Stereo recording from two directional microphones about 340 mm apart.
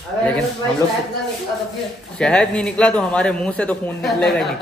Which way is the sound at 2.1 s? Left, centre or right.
Centre.